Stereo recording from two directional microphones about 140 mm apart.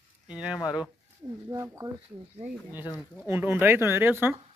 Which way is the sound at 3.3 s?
15° right (ahead or behind).